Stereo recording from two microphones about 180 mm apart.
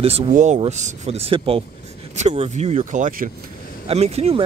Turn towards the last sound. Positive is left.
turn(degrees=-35)  # may be behind; listen again after turning